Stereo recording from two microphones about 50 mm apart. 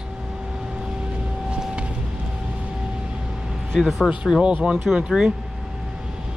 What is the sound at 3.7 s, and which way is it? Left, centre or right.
Speech, centre.